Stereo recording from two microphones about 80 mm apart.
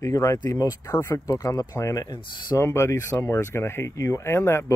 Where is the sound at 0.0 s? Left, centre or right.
Left.